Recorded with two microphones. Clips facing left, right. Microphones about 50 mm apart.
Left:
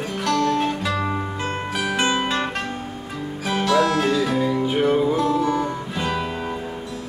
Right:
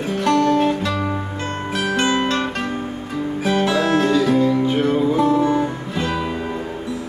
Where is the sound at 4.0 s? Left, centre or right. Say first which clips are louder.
Right 4 dB; centre.